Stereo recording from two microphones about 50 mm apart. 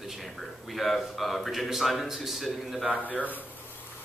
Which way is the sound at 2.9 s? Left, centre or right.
Left.